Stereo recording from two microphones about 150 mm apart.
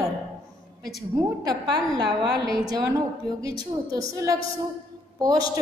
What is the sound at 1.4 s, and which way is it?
A woman's voice, 25° right (ahead or behind).